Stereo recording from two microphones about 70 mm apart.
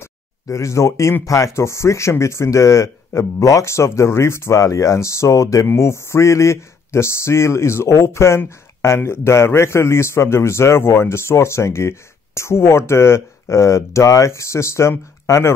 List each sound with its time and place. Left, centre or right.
0.0 s a sound: left
1.2 s speech: left
5.8 s a man's voice: left